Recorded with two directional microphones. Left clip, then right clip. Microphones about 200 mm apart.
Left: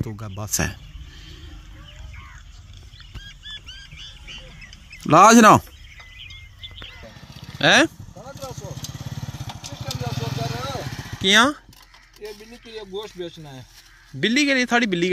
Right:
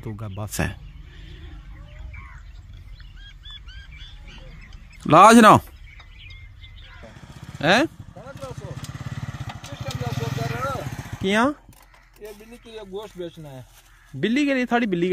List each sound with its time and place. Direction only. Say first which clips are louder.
0.0 s speech: left 2 dB; 5° right (ahead or behind)
3.3 s goose: left 5 dB; 60° right (ahead or behind)
5.0 s speech: even; 5° right (ahead or behind)
7.1 s a sound: left 2 dB; 25° left (ahead or behind)
7.5 s speech: left 3 dB; centre (ahead or behind)
8.1 s vehicle: left 1 dB; 15° left (ahead or behind); by 11.6 s 10° right (ahead or behind)
12.4 s speech: left 2 dB; 10° right (ahead or behind)